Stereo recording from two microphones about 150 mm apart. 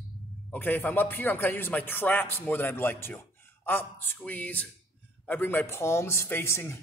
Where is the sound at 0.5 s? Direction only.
10° left (ahead or behind).